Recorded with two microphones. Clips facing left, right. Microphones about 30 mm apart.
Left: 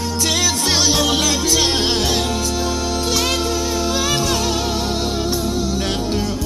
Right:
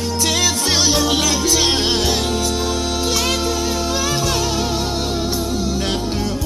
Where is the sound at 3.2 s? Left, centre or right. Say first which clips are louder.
Even; centre.